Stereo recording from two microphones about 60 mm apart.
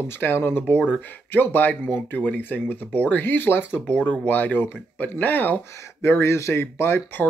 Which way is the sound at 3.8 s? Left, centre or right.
Left.